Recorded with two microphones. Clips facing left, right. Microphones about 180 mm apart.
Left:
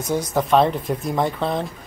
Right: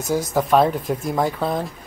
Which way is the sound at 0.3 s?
Centre (ahead or behind).